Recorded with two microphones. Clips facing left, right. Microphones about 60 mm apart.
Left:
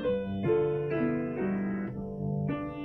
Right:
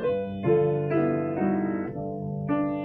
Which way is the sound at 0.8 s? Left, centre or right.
Right.